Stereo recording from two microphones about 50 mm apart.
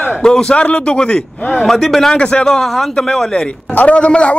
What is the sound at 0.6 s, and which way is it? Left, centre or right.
Speech, left.